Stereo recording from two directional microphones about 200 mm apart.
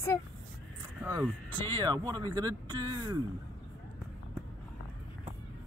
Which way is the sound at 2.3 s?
20° right (ahead or behind).